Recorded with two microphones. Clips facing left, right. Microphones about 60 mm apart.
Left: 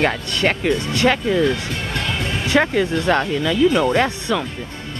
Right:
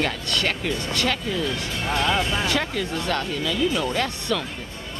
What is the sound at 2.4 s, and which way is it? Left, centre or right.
Speech, left.